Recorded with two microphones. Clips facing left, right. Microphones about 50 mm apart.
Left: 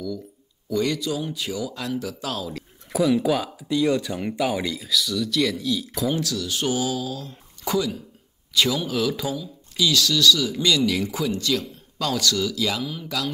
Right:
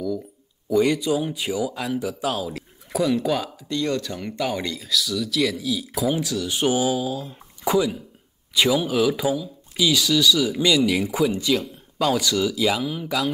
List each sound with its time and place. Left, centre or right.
0.7 s speech: centre
2.9 s speech: centre
6.2 s speech: centre